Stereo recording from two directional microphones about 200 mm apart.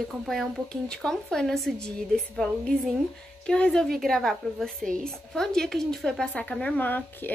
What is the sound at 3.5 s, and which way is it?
A woman's voice, 5° left (ahead or behind).